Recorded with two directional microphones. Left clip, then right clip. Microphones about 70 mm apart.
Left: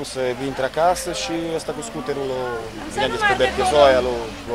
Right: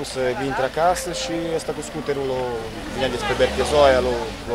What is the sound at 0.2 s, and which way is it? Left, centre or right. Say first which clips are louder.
Speech: right 1 dB; centre.